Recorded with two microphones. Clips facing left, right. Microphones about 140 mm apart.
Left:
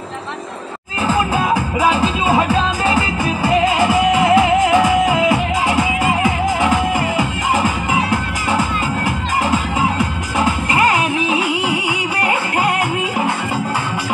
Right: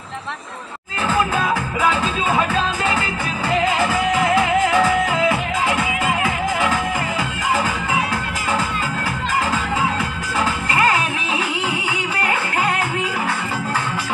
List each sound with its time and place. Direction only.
1.0 s music: 20° left (ahead or behind)
10.4 s music: 15° left (ahead or behind)